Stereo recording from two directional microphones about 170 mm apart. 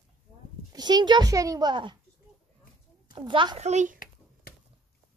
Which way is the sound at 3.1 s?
30° right (ahead or behind).